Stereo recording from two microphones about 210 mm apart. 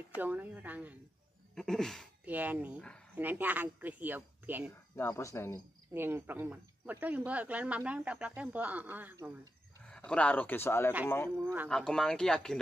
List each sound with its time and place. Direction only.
0.2 s speech: 5° right (ahead or behind)
4.9 s speech: 15° left (ahead or behind)
5.9 s speech: 10° right (ahead or behind)
9.8 s speech: 5° left (ahead or behind)